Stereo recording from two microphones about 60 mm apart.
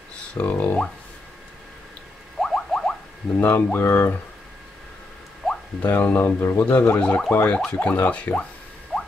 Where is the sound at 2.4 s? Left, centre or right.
Centre.